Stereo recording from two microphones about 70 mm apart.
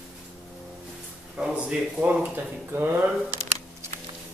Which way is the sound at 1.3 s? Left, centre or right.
Centre.